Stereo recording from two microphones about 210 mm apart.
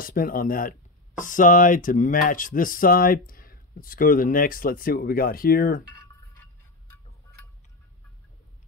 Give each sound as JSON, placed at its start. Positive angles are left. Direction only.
{"t": 0.0, "sound": "speech", "side_deg": 45}